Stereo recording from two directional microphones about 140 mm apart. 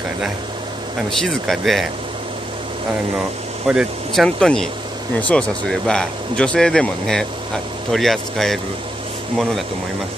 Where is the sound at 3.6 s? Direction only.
5° right (ahead or behind).